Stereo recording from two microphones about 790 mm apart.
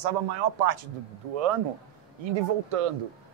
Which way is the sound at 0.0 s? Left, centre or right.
Right.